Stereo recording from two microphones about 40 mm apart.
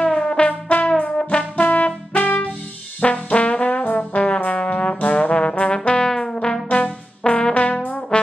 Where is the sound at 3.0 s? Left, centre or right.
Left.